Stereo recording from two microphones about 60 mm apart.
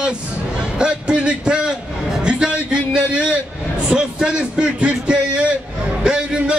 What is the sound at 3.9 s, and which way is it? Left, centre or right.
A man's voice, centre.